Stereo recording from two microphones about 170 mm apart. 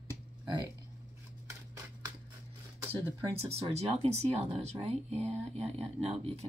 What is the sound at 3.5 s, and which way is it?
Speech, 40° right (ahead or behind).